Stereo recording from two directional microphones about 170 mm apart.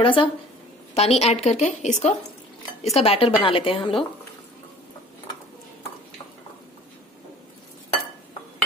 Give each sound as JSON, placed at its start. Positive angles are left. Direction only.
{"t": 0.0, "sound": "a woman's voice", "side_deg": 30}